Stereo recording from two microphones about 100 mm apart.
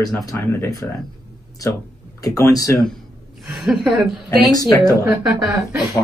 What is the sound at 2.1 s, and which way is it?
Speech, 35° left (ahead or behind).